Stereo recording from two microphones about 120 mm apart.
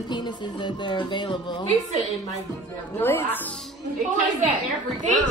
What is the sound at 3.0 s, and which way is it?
Speech, 20° left (ahead or behind).